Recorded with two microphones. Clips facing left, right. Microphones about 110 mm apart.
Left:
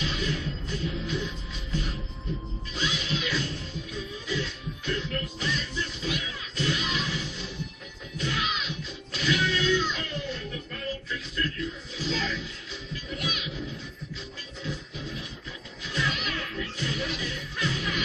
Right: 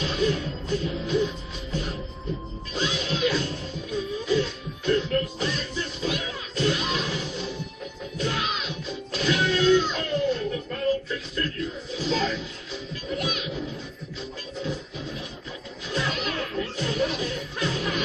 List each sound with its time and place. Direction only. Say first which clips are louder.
0.0 s music: right 6 dB; 40° right (ahead or behind)
15.9 s music: right 3 dB; 40° right (ahead or behind)